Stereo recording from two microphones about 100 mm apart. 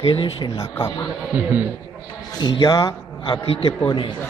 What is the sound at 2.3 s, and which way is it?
Speech, 45° left (ahead or behind).